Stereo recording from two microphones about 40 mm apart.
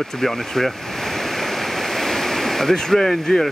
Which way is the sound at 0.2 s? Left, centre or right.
Centre.